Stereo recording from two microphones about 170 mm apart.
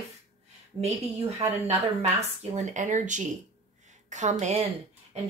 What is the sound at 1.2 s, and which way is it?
Speech, 40° right (ahead or behind).